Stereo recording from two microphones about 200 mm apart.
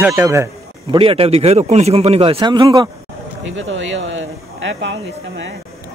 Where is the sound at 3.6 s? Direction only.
75° right (ahead or behind).